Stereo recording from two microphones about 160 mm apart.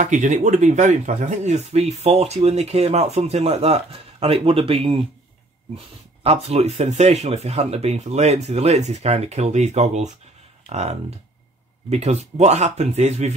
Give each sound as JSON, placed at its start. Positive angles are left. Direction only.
{"t": 0.0, "sound": "speech", "side_deg": -50}
{"t": 6.2, "sound": "speech", "side_deg": -40}